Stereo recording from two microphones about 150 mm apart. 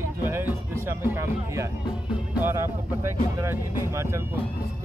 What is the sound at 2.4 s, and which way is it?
Speech, 20° right (ahead or behind).